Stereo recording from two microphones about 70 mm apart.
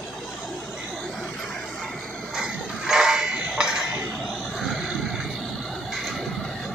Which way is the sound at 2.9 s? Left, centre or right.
Centre.